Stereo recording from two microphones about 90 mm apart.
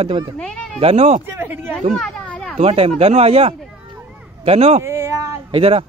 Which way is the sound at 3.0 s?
90° right.